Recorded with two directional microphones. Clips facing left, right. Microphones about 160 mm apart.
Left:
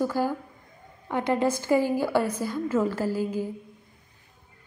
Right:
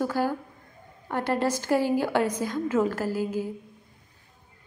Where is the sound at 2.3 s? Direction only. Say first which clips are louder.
Even; 15° right (ahead or behind).